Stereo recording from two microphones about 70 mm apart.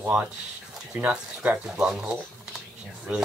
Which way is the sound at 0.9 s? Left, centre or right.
Centre.